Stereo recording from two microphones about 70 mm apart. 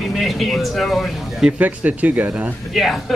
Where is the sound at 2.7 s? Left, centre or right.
Centre.